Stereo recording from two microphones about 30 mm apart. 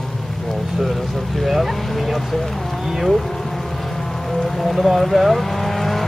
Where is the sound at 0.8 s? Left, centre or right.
Centre.